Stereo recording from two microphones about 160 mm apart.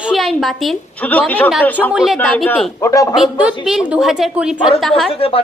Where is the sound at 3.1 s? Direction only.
5° right (ahead or behind).